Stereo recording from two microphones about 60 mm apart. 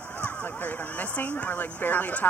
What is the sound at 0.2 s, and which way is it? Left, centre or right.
Speech, left.